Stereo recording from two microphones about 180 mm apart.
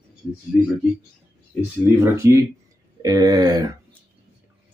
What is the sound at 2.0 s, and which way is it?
Speech, 15° right (ahead or behind).